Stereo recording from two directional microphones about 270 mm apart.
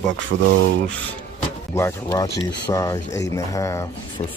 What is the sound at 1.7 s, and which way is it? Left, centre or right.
Speech, centre.